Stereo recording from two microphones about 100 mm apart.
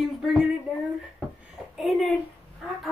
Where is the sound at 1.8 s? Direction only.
Centre (ahead or behind).